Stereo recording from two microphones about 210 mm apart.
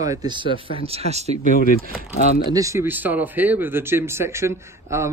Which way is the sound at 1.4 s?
40° left (ahead or behind).